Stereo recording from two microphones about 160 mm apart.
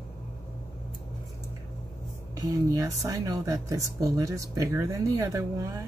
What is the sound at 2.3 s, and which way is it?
Speech, 20° right (ahead or behind).